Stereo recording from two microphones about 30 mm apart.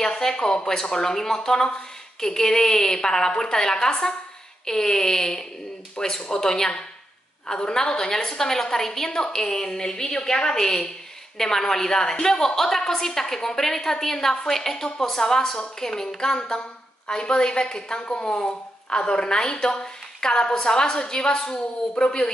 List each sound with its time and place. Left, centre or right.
0.0 s a woman's voice: left
0.9 s a woman's voice: centre